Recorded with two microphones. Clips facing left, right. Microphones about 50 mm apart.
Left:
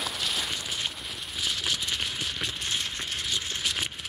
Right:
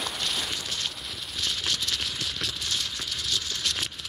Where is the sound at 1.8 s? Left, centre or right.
Centre.